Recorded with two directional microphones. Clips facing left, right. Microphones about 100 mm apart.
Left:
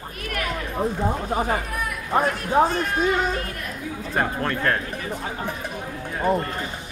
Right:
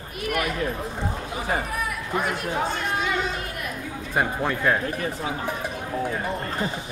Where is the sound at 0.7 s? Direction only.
40° left (ahead or behind).